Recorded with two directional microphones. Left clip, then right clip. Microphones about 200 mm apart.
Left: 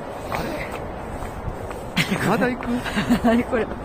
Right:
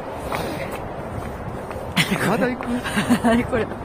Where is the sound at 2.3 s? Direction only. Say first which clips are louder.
Even; 35° left (ahead or behind).